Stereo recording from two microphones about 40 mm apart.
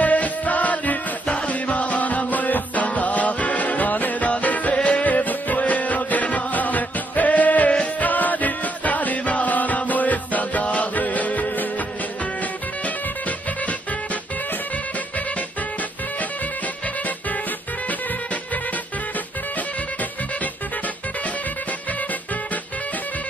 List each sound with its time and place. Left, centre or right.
0.0 s music: left